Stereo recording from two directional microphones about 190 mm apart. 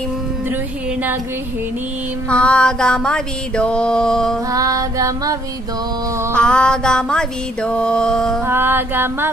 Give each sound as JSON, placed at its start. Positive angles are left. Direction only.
{"t": 2.2, "sound": "music", "side_deg": 5}
{"t": 4.5, "sound": "music", "side_deg": -15}
{"t": 6.3, "sound": "music", "side_deg": 5}
{"t": 8.5, "sound": "music", "side_deg": -10}